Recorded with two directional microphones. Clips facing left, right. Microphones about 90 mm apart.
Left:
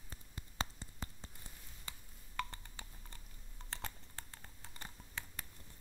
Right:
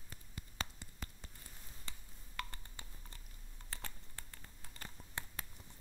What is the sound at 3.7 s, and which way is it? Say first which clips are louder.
Typing: left 3 dB; 25° left (ahead or behind).